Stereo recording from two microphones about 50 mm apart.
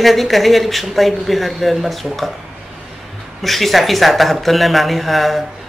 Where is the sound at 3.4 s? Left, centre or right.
Centre.